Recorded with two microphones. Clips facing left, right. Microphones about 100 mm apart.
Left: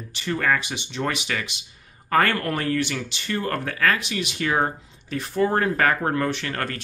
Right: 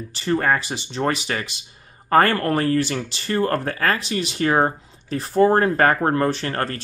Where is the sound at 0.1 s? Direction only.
35° right (ahead or behind).